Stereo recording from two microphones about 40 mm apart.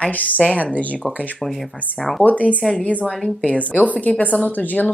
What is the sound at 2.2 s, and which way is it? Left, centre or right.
Speech, left.